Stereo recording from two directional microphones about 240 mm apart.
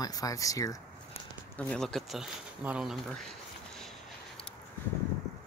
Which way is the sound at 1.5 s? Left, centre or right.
Centre.